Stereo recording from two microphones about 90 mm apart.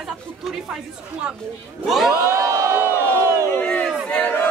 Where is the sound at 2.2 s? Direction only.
35° right (ahead or behind).